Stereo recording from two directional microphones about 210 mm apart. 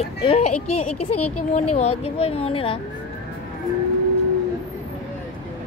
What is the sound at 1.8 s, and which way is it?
Speech, 30° left (ahead or behind).